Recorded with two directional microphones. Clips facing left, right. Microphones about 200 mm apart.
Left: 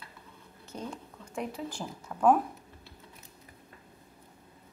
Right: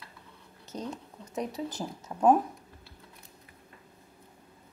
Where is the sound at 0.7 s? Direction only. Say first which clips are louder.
Right 2 dB; 20° right (ahead or behind).